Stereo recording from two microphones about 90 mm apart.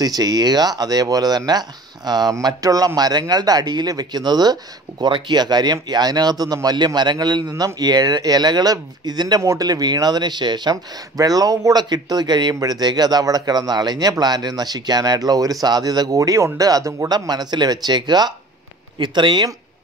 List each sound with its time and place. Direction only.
0.0 s speech: 45° right (ahead or behind)
18.9 s speech: 65° right (ahead or behind)